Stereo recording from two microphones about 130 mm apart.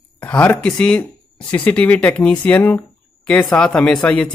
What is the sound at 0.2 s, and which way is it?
Speech, 15° left (ahead or behind).